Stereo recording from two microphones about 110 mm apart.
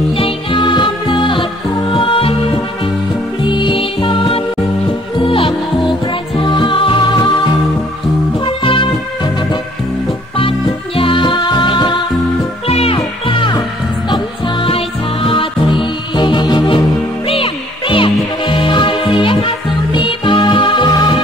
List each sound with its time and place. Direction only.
0.2 s music: 50° left (ahead or behind)
3.4 s music: 45° left (ahead or behind)
6.3 s music: 45° left (ahead or behind)
8.6 s music: 50° left (ahead or behind)
11.0 s music: 50° left (ahead or behind)
12.6 s music: 65° left (ahead or behind); by 21.2 s 45° left (ahead or behind)